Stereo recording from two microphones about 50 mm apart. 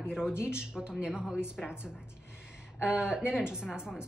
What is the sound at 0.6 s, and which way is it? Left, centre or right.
Speech, centre.